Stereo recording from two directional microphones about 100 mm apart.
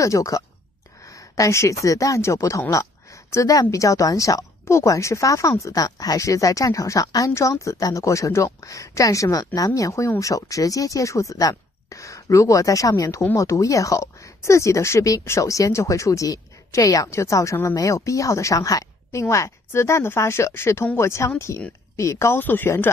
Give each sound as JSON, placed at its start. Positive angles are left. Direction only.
{"t": 0.0, "sound": "speech", "side_deg": 35}
{"t": 2.7, "sound": "a sound", "side_deg": 30}
{"t": 3.7, "sound": "speech", "side_deg": 35}